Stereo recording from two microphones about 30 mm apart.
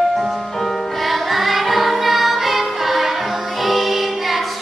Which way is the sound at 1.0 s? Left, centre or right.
Centre.